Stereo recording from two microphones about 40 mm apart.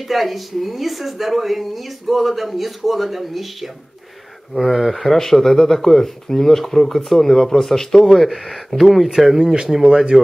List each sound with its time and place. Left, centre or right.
0.1 s a woman's voice: centre
4.6 s speech: centre
9.4 s speech: centre